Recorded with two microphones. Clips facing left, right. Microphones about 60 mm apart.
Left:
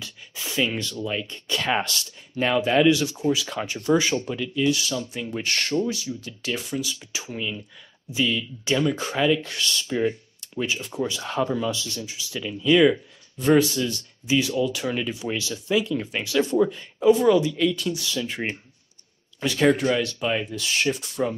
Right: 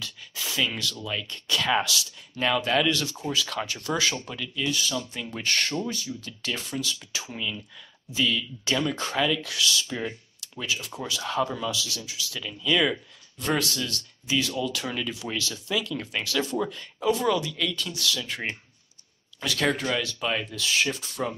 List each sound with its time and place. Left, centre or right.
0.0 s a sound: centre
1.0 s speech: left
9.4 s speech: left
9.8 s speech: centre
11.7 s speech: left
12.1 s speech: centre
19.7 s speech: centre